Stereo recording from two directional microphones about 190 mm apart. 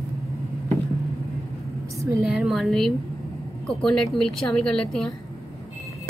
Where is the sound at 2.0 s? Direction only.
15° right (ahead or behind).